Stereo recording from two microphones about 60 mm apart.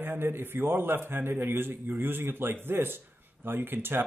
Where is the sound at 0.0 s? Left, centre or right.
Right.